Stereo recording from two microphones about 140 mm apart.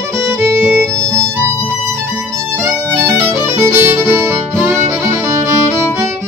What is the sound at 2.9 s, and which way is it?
Music, 20° right (ahead or behind).